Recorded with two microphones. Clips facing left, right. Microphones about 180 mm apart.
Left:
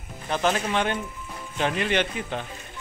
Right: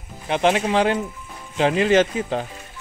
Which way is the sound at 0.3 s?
25° right (ahead or behind).